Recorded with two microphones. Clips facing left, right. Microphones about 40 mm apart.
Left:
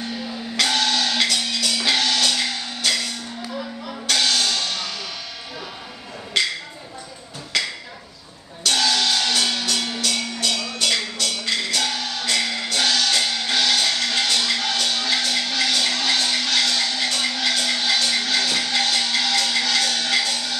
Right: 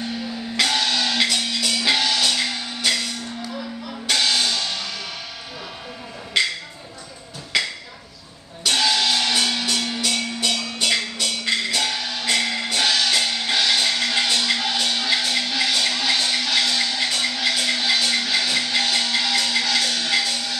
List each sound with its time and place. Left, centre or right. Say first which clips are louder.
0.0 s music: right 1 dB; centre
3.4 s music: left 1 dB; centre
4.1 s music: even; centre
6.4 s a sound: right 1 dB; centre
7.5 s chop: right 1 dB; centre
8.6 s music: even; centre